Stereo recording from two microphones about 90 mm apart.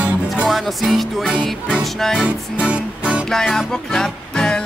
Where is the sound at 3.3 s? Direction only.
5° left (ahead or behind).